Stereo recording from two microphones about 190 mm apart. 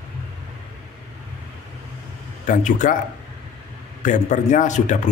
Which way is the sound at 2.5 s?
40° left (ahead or behind).